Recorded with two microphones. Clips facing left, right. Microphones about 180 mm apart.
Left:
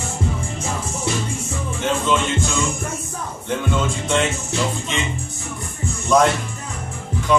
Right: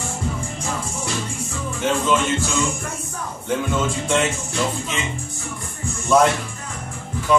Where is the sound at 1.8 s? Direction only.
Centre (ahead or behind).